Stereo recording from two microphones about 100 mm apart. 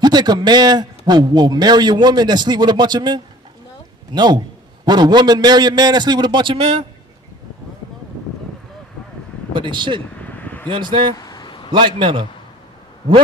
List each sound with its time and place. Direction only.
0.0 s a man's voice: 45° right (ahead or behind); by 6.7 s 60° right (ahead or behind)
9.5 s speech: 50° right (ahead or behind)
10.2 s vehicle: 15° left (ahead or behind)
10.7 s a man's voice: 50° right (ahead or behind)
11.1 s vehicle: 40° left (ahead or behind)
11.7 s a man's voice: 55° right (ahead or behind)